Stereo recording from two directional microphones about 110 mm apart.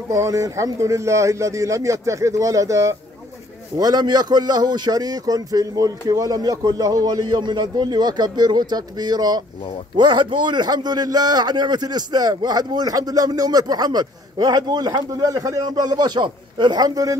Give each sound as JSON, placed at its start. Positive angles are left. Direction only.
{"t": 0.1, "sound": "a man's voice", "side_deg": -30}